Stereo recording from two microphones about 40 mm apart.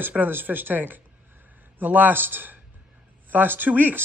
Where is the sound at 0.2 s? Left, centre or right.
Right.